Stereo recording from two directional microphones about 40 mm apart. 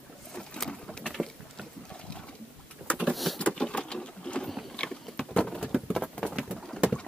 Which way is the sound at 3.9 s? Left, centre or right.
Left.